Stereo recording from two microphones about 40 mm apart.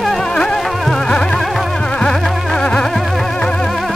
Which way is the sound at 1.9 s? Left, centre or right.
Left.